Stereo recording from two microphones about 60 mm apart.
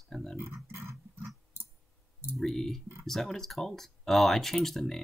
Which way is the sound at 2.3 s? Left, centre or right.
Centre.